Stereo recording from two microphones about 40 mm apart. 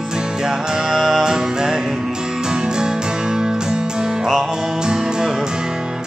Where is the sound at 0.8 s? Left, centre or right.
Centre.